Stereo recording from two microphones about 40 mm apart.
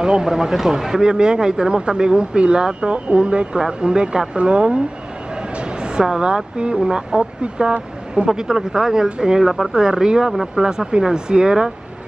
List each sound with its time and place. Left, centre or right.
0.0 s speech: centre
5.6 s a sound: right
6.2 s speech: right; by 10.6 s centre
10.6 s speech: centre